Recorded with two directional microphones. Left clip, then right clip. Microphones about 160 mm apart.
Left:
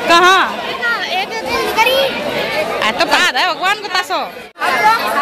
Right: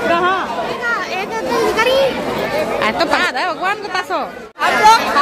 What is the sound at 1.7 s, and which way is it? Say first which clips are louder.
Children playing: left 3 dB; 65° right (ahead or behind).